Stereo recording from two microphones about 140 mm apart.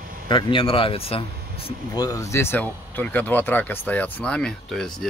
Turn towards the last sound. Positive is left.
turn(degrees=5)  # may be behind; listen again after turning